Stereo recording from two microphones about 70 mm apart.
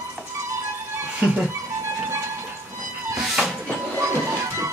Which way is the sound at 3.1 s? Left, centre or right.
Centre.